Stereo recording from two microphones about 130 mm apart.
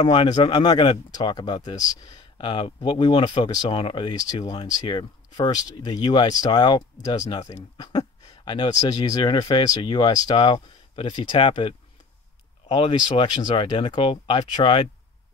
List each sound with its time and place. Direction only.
0.0 s speech: 40° left (ahead or behind)